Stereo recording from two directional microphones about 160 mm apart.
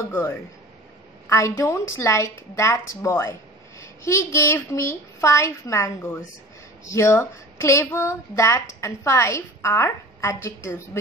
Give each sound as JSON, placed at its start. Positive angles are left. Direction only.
{"t": 0.1, "sound": "a woman's voice", "side_deg": 15}